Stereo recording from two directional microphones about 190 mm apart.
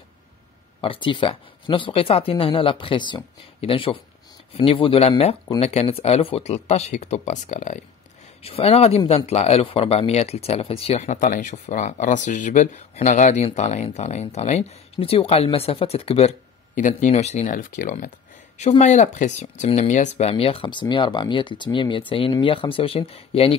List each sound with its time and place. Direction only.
0.7 s speech: 25° left (ahead or behind)